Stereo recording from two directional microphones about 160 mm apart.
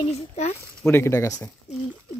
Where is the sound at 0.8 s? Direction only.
15° left (ahead or behind).